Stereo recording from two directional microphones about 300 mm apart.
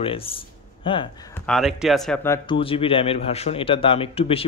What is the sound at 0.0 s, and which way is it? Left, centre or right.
Speech, centre.